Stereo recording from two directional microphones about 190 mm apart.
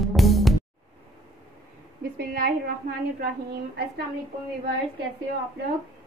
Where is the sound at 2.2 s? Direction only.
55° right (ahead or behind).